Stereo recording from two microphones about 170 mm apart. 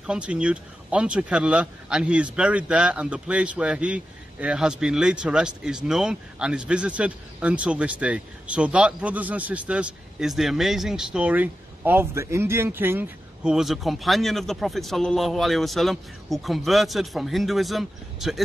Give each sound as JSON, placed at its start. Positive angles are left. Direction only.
{"t": 0.0, "sound": "speech", "side_deg": -5}